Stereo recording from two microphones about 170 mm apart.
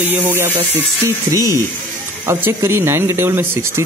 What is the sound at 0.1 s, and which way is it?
Speech, 15° right (ahead or behind).